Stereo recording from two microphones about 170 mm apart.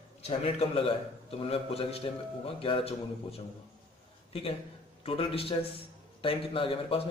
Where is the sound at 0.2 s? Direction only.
35° left (ahead or behind).